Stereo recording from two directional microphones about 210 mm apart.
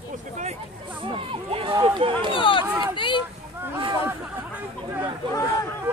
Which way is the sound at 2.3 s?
25° left (ahead or behind).